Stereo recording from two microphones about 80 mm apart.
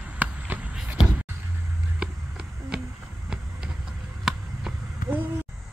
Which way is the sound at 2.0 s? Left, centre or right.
Centre.